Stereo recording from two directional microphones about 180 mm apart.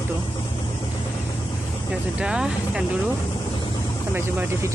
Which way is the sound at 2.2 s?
5° right (ahead or behind).